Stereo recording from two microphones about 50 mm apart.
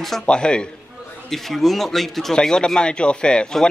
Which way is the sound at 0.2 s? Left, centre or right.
Centre.